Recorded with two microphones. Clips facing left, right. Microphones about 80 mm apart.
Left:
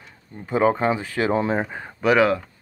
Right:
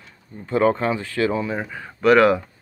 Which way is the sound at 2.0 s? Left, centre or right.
Centre.